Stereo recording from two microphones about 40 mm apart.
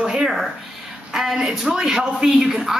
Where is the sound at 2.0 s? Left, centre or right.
Right.